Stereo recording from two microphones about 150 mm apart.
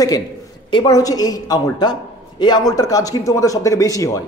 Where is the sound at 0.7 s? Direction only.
30° left (ahead or behind).